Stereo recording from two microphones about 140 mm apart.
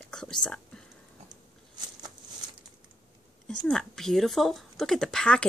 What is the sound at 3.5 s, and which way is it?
Speech, 5° left (ahead or behind).